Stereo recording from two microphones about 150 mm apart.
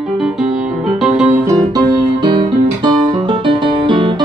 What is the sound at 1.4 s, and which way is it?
Music, 25° right (ahead or behind).